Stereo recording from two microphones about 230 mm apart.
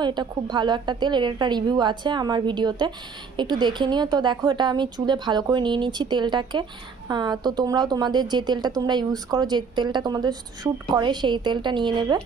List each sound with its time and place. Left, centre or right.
0.0 s a woman's voice: centre